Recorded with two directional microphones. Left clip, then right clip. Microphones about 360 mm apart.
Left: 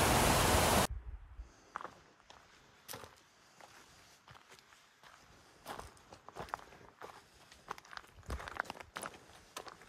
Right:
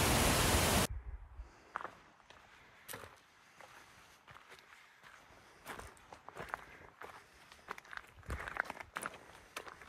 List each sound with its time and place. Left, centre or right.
0.0 s static: centre
1.7 s walk: centre
6.3 s walk: centre